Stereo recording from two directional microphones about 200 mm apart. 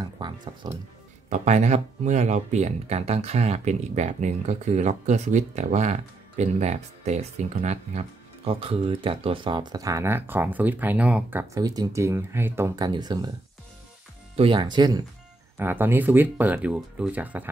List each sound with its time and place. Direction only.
0.2 s speech: 25° right (ahead or behind)
1.3 s speech: 35° right (ahead or behind); by 13.3 s 20° right (ahead or behind)
14.3 s speech: 25° right (ahead or behind)
15.5 s speech: 10° right (ahead or behind)